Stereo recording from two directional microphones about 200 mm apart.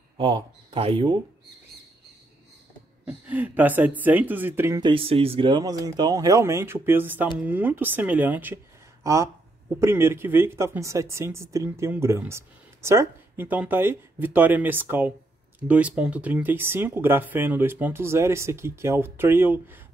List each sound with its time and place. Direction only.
0.2 s speech: 25° right (ahead or behind)
3.1 s speech: 10° right (ahead or behind)